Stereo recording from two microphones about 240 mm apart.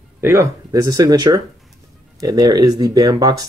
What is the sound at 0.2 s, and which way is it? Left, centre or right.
Speech, centre.